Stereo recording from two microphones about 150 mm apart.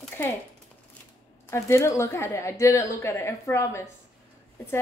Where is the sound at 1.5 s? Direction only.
20° left (ahead or behind).